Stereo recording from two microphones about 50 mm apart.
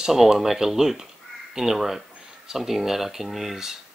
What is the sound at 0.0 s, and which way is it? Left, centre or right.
Speech, centre.